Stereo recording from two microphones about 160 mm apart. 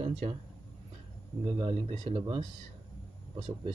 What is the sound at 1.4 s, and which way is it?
Speech, 35° right (ahead or behind).